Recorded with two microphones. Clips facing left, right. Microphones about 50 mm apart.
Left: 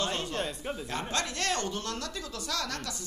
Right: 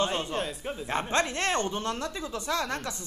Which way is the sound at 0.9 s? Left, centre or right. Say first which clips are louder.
Right 7 dB; right.